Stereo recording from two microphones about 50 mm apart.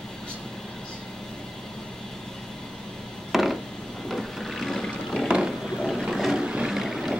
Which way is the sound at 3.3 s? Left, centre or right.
Centre.